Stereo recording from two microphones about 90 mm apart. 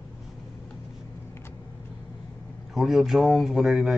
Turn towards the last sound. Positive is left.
turn(degrees=-5)  # may be behind; listen again after turning